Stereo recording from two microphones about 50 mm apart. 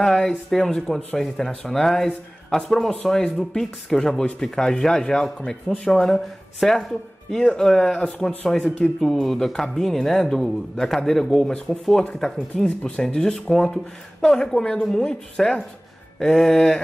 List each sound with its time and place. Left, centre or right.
0.0 s speech: centre